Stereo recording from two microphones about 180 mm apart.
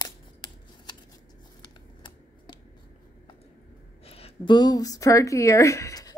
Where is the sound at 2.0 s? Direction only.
25° left (ahead or behind).